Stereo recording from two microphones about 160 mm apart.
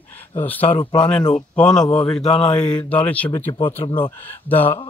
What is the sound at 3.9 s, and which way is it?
Speech, 30° left (ahead or behind).